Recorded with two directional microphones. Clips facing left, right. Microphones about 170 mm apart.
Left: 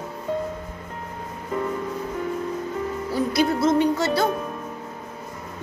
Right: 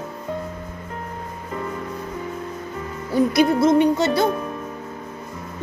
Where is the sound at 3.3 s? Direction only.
15° right (ahead or behind).